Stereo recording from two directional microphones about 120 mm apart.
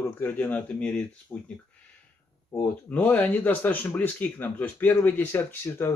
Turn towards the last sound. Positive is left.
turn(degrees=20)  # may be behind; listen again after turning